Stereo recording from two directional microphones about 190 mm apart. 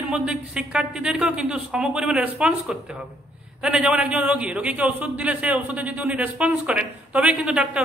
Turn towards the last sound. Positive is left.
turn(degrees=-5)  # may be behind; listen again after turning